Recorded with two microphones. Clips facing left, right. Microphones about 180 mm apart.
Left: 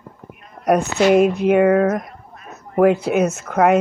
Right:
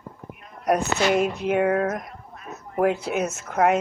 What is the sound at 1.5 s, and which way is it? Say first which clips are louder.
Speech: left 6 dB; 90° left.